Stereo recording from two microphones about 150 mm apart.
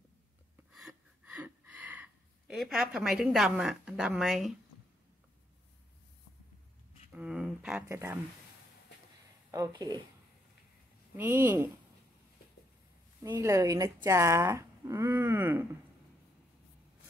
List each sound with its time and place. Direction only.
0.7 s gasp: centre (ahead or behind)
1.4 s a woman's voice: 10° right (ahead or behind)
7.1 s speech: 10° right (ahead or behind)
7.9 s speech: 15° right (ahead or behind)
9.5 s speech: 25° right (ahead or behind)
11.1 s speech: 15° right (ahead or behind)
13.2 s speech: 20° right (ahead or behind)